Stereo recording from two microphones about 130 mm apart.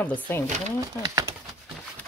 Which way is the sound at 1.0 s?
25° right (ahead or behind).